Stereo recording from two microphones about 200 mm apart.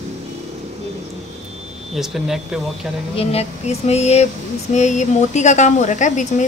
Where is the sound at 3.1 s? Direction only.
30° left (ahead or behind).